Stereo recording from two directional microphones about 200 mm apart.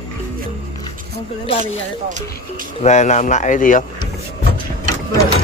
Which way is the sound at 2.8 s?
35° left (ahead or behind).